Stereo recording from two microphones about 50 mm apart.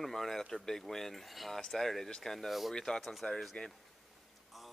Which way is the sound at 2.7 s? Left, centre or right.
Centre.